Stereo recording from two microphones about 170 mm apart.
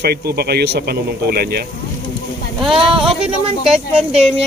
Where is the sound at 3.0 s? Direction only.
5° right (ahead or behind).